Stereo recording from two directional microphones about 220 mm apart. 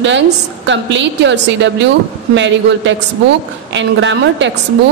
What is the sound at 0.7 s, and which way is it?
A woman's voice, 55° right (ahead or behind).